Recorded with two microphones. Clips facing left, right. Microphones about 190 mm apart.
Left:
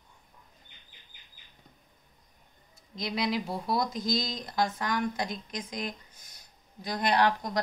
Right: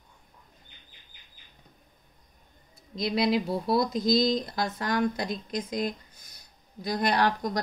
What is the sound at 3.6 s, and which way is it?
Speech, 35° right (ahead or behind).